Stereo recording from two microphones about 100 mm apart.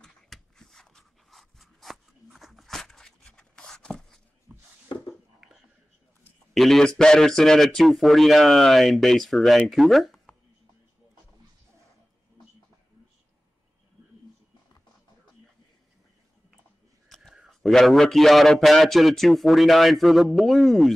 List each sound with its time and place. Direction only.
0.0 s a sound: 5° left (ahead or behind)
4.5 s chopping: 25° right (ahead or behind)
5.4 s whispering: 5° right (ahead or behind)
6.5 s a man's voice: centre (ahead or behind)
17.1 s a man's voice: centre (ahead or behind)